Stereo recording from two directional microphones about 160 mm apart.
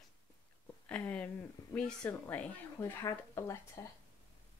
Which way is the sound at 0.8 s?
10° left (ahead or behind).